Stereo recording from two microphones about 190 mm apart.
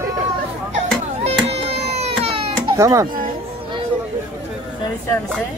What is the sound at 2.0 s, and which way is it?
Baby cry, 30° right (ahead or behind).